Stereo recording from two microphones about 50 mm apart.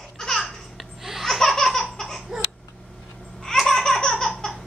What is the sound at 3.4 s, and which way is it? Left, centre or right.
Laughter, centre.